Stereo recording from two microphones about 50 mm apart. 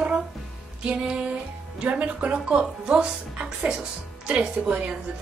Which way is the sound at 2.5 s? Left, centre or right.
Centre.